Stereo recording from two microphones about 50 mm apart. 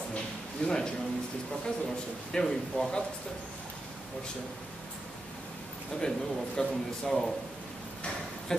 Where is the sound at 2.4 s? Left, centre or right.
Centre.